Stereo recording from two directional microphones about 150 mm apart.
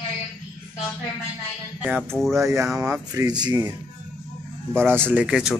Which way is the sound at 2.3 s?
20° right (ahead or behind).